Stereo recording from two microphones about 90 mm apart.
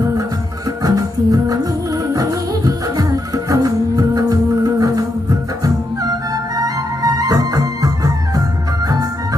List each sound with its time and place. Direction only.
0.8 s music: 40° right (ahead or behind)
6.6 s music: 45° right (ahead or behind)